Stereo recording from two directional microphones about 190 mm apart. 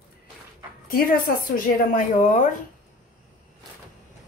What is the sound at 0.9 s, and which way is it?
A woman's voice, 50° left (ahead or behind).